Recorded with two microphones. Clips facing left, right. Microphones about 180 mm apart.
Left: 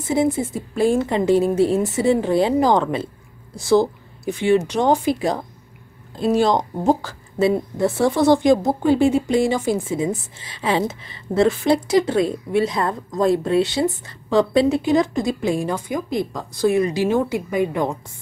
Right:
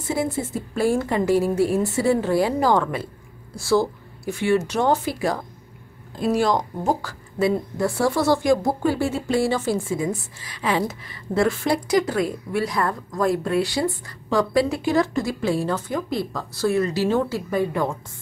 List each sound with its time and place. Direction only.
0.0 s a woman's voice: 20° left (ahead or behind)